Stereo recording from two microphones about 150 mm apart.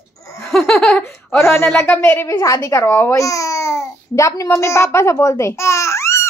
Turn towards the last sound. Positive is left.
turn(degrees=20)  # may be behind; listen again after turning